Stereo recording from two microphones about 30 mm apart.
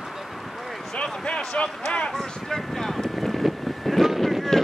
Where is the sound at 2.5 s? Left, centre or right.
Centre.